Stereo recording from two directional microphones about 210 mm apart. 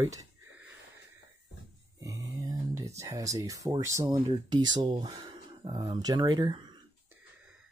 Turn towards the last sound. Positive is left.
turn(degrees=-20)  # may be behind; listen again after turning